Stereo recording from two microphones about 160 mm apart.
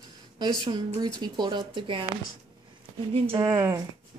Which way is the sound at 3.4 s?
25° right (ahead or behind).